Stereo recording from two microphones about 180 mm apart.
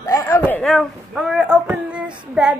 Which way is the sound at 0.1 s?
15° left (ahead or behind).